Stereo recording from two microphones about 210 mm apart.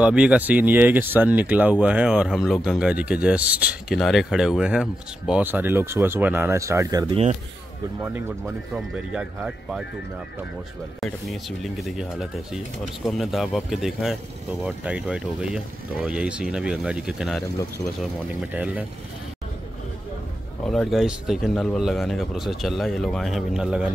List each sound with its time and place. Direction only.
0.0 s speech: 5° right (ahead or behind)
8.7 s speech: 5° right (ahead or behind)
11.0 s speech: centre (ahead or behind)
18.5 s speech: 5° right (ahead or behind)
20.6 s speech: centre (ahead or behind)